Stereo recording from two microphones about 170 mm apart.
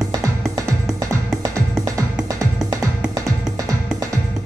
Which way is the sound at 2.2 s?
20° right (ahead or behind).